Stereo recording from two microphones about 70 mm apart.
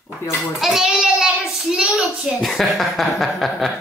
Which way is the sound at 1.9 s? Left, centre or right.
Centre.